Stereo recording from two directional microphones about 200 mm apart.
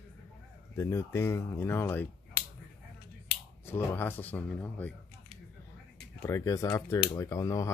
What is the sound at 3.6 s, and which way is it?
Speech, 10° left (ahead or behind).